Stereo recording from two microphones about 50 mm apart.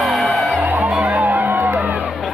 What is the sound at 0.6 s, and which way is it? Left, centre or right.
Music, right.